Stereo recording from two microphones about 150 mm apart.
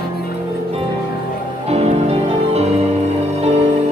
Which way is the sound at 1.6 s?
45° right (ahead or behind).